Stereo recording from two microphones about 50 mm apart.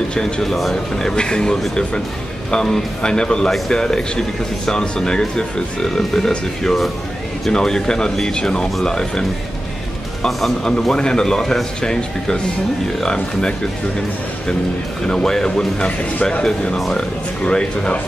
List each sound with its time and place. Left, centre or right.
0.1 s speech: centre
0.9 s speech: centre
10.8 s speech: centre
15.0 s speech: centre